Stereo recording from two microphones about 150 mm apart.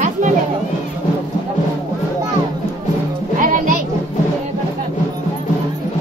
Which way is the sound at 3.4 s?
65° right (ahead or behind).